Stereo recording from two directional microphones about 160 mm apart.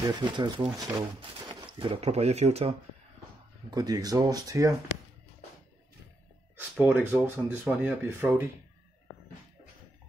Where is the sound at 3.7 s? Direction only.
25° right (ahead or behind).